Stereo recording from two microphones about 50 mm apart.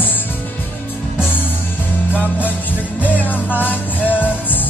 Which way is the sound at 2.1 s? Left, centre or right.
Left.